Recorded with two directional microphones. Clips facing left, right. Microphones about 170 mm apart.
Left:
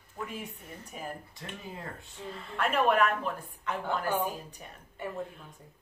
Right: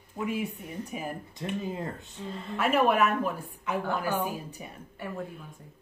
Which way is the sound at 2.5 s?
5° right (ahead or behind).